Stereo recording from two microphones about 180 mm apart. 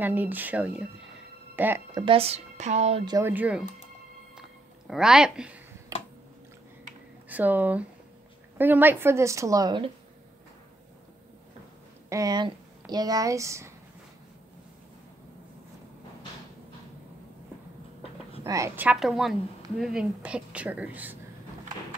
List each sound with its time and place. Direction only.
0.0 s a woman's voice: 10° right (ahead or behind)
2.0 s speech: 30° right (ahead or behind)
3.1 s a woman's voice: 15° right (ahead or behind)
4.4 s a sound: 5° right (ahead or behind)
5.9 s a sound: 15° right (ahead or behind)
7.2 s a woman's voice: 10° right (ahead or behind)
12.1 s speech: 20° right (ahead or behind)
18.4 s a woman's voice: 20° right (ahead or behind)
18.9 s a woman's voice: centre (ahead or behind)